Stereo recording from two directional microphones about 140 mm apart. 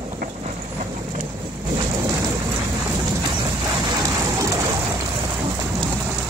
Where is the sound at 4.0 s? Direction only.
25° right (ahead or behind).